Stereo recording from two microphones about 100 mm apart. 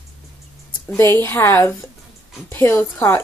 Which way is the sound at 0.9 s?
25° left (ahead or behind).